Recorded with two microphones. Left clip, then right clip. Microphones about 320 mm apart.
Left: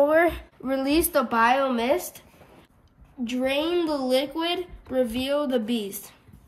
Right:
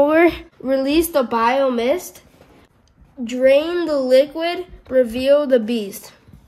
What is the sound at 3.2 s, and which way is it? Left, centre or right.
Speech, centre.